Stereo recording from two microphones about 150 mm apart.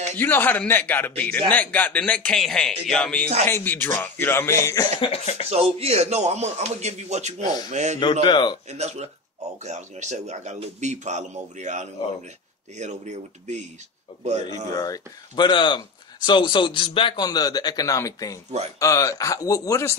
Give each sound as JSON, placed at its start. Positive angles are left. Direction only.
{"t": 0.2, "sound": "speech", "side_deg": 10}
{"t": 5.0, "sound": "speech", "side_deg": 40}
{"t": 5.5, "sound": "a man's voice", "side_deg": -45}
{"t": 8.2, "sound": "speech", "side_deg": 30}
{"t": 8.6, "sound": "a man's voice", "side_deg": -45}
{"t": 14.7, "sound": "speech", "side_deg": 30}